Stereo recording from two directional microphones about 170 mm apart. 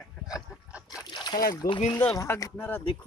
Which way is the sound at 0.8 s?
25° left (ahead or behind).